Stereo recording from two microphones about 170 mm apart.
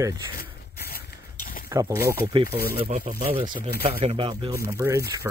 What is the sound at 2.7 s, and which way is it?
Speech, 35° right (ahead or behind).